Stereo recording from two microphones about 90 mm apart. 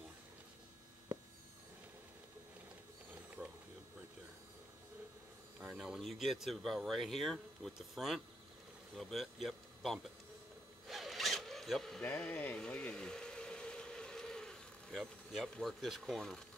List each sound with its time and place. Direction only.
3.4 s a sound: 10° right (ahead or behind)
5.6 s speech: 10° right (ahead or behind)
10.9 s zipper: centre (ahead or behind)
12.0 s speech: 15° left (ahead or behind)
12.5 s vehicle: 10° left (ahead or behind)
15.6 s speech: centre (ahead or behind)